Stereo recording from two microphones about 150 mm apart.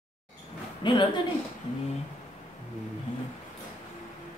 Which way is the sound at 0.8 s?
30° left (ahead or behind).